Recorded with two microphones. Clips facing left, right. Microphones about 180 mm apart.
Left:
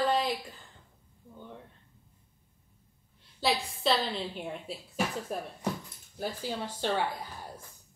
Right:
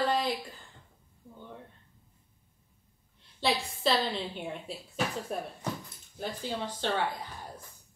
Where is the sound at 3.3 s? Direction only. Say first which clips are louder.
Even; centre (ahead or behind).